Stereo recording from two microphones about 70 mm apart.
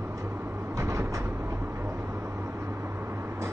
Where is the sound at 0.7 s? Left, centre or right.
Right.